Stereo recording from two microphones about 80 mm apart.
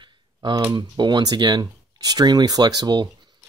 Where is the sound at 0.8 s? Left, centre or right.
Right.